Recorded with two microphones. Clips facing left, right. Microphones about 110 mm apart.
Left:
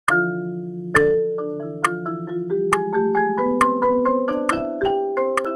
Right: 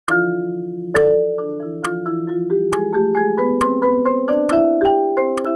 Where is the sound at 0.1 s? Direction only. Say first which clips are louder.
Right 4 dB; 10° right (ahead or behind).